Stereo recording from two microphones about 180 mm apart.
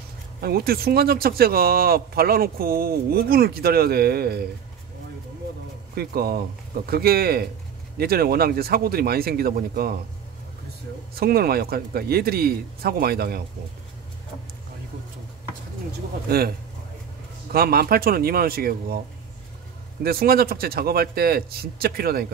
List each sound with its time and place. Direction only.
0.4 s speech: 60° right (ahead or behind)
5.9 s speech: 60° right (ahead or behind)
11.1 s speech: 55° right (ahead or behind)
16.3 s speech: 60° right (ahead or behind)
20.0 s speech: 55° right (ahead or behind)